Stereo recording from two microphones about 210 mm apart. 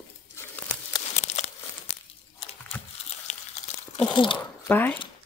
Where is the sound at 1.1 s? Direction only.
30° left (ahead or behind).